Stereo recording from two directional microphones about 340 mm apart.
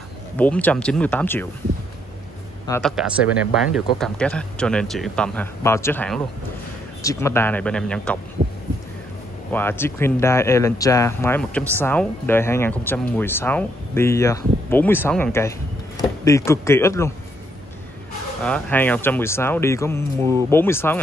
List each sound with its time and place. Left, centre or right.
0.4 s speech: centre
2.6 s speech: centre
8.4 s heart sounds: centre
9.5 s speech: centre
18.4 s speech: centre